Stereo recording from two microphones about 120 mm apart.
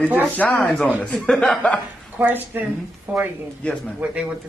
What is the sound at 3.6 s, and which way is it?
Speech, 10° left (ahead or behind).